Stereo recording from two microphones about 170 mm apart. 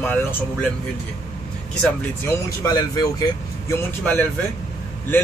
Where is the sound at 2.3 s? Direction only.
20° left (ahead or behind).